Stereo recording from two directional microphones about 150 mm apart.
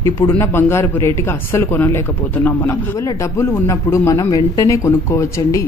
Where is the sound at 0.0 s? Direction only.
20° left (ahead or behind).